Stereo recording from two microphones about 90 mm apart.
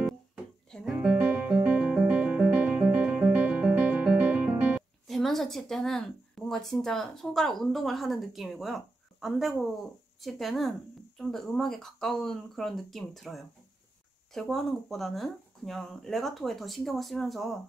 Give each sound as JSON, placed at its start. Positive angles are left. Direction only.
{"t": 0.8, "sound": "music", "side_deg": -15}
{"t": 5.0, "sound": "speech", "side_deg": 5}